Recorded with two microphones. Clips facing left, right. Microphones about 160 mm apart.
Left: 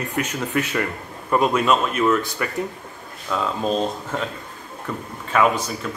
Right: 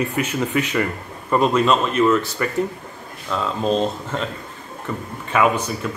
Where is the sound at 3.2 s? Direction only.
Centre (ahead or behind).